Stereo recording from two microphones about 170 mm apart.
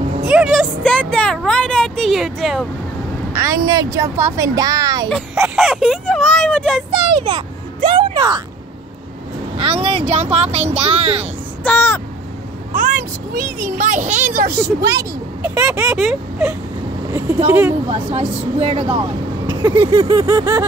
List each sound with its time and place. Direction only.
0.2 s speech: 5° right (ahead or behind)
3.3 s speech: 20° right (ahead or behind)
5.1 s speech: 5° right (ahead or behind)
6.9 s a child's voice: 30° right (ahead or behind)
9.6 s speech: 30° right (ahead or behind)
11.6 s speech: 10° left (ahead or behind)
12.7 s a child's voice: 50° right (ahead or behind)
14.9 s speech: 20° right (ahead or behind)
15.5 s speech: 10° right (ahead or behind)
17.5 s a sound: 10° right (ahead or behind)
17.8 s speech: 35° right (ahead or behind)
20.0 s a sound: 20° right (ahead or behind)